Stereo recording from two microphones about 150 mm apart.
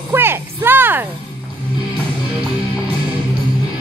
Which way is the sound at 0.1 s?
15° right (ahead or behind).